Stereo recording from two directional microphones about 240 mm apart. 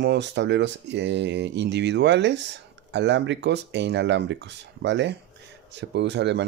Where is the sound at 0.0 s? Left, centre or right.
Right.